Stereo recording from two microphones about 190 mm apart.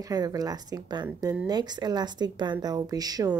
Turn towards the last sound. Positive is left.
turn(degrees=-20)  # may be behind; listen again after turning